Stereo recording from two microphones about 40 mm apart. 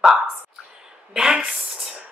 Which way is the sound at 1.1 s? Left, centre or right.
Right.